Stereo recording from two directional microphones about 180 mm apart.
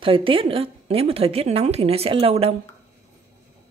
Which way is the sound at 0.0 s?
30° right (ahead or behind).